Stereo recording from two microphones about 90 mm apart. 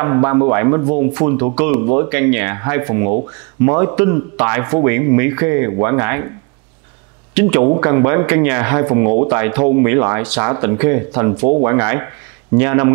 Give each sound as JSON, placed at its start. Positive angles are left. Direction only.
{"t": 0.0, "sound": "a man's voice", "side_deg": -20}
{"t": 7.3, "sound": "a man's voice", "side_deg": -20}